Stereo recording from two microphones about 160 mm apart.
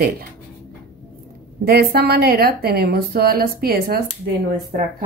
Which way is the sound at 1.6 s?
75° right (ahead or behind).